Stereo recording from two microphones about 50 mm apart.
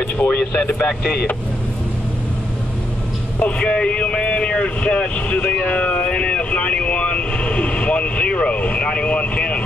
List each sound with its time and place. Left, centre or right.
0.2 s speech: left
0.8 s speech: centre
3.5 s speech: centre